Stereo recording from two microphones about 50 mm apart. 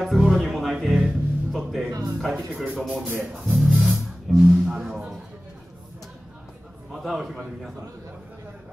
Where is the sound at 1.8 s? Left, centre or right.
Right.